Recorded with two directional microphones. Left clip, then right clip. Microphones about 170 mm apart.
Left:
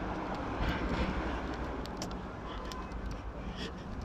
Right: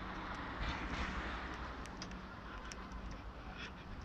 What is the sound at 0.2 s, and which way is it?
Vehicle, 65° left (ahead or behind).